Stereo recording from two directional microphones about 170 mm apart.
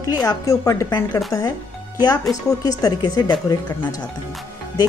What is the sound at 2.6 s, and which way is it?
Speech, 20° left (ahead or behind).